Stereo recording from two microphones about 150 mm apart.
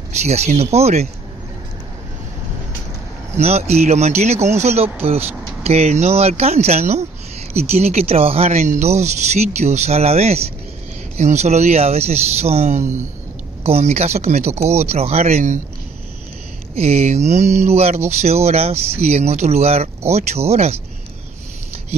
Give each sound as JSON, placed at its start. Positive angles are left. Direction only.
{"t": 0.1, "sound": "speech", "side_deg": -50}
{"t": 3.3, "sound": "speech", "side_deg": -45}
{"t": 16.7, "sound": "speech", "side_deg": -45}